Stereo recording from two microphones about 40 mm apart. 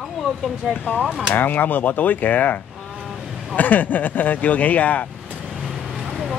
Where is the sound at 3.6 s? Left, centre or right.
Left.